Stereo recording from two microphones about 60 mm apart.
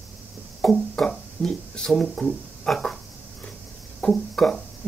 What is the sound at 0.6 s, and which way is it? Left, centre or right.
Speech, centre.